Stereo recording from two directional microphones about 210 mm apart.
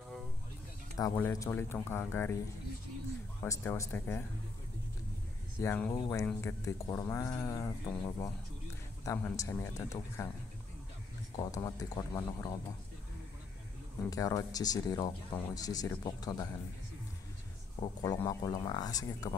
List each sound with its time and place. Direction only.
0.9 s speech: 15° left (ahead or behind)
3.4 s speech: 15° left (ahead or behind)
5.6 s speech: 10° left (ahead or behind)
11.3 s speech: 20° left (ahead or behind)
14.1 s speech: 15° left (ahead or behind)
17.7 s speech: 20° left (ahead or behind)